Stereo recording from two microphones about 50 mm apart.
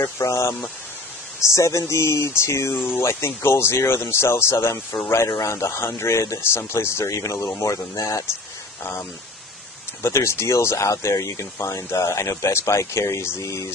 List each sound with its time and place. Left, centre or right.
0.0 s a man's voice: left
5.1 s a man's voice: left
10.0 s a man's voice: left